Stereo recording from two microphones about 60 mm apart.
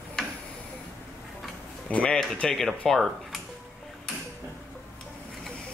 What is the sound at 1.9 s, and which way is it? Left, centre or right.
Speech, centre.